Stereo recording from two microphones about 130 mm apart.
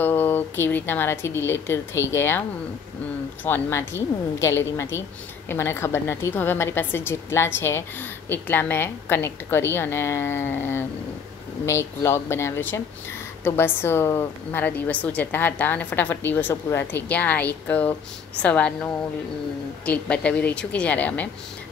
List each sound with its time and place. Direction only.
0.0 s a woman's voice: 15° left (ahead or behind)
3.4 s a woman's voice: 15° left (ahead or behind)
19.9 s a woman's voice: 10° left (ahead or behind)